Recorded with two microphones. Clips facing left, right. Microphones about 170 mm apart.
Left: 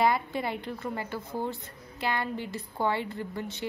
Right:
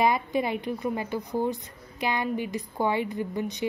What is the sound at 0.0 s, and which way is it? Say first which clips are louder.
A woman's voice: right 2 dB; 20° right (ahead or behind).